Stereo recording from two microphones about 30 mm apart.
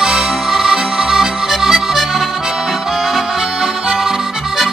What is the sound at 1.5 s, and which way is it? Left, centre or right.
Accordion, centre.